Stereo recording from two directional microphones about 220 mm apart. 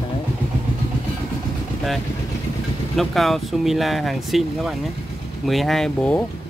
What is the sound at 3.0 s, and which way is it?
Speech, centre (ahead or behind).